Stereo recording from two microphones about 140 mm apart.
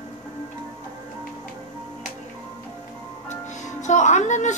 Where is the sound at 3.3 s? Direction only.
60° left (ahead or behind).